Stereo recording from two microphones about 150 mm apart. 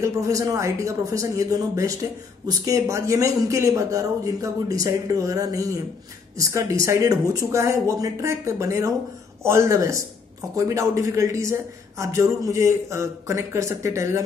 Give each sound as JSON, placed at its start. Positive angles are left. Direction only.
{"t": 0.0, "sound": "a man's voice", "side_deg": -20}